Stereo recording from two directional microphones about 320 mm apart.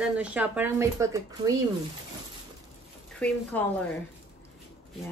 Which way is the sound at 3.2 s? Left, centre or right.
Centre.